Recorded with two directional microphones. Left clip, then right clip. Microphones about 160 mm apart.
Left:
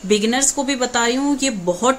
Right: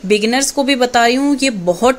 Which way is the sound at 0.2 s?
30° right (ahead or behind).